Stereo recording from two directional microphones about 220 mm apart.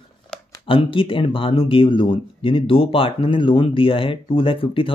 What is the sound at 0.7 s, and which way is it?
Speech, 25° left (ahead or behind).